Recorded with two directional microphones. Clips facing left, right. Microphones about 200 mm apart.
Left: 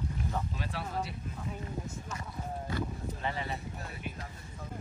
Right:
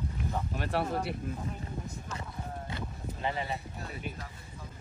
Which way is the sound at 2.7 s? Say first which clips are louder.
Left 4 dB; 20° right (ahead or behind).